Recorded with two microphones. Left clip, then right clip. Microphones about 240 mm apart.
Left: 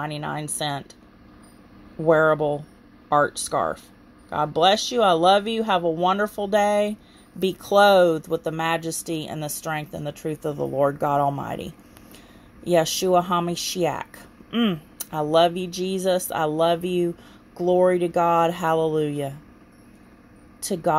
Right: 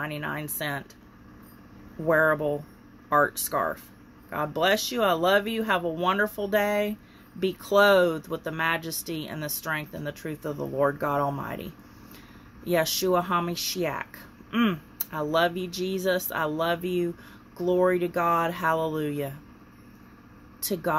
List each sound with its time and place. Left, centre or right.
0.4 s speech: left
2.0 s speech: left
12.7 s speech: left
20.6 s speech: left